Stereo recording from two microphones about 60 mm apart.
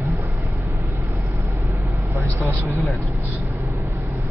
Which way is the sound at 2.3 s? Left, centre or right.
Right.